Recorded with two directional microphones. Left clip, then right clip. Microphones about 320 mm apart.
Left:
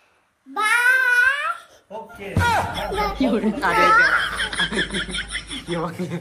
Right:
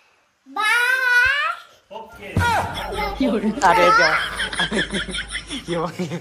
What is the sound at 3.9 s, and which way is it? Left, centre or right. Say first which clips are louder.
Speech: even; centre.